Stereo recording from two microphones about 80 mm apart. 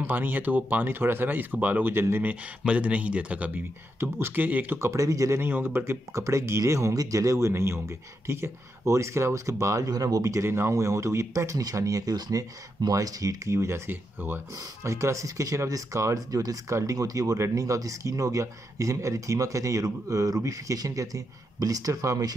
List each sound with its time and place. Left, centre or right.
0.0 s speech: right
2.6 s speech: centre
4.0 s speech: right
5.4 s speech: right
9.8 s speech: right
14.5 s speech: right